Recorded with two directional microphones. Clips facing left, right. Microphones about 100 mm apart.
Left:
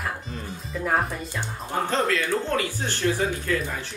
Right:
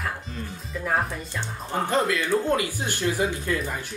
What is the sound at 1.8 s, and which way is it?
Speech, 15° right (ahead or behind).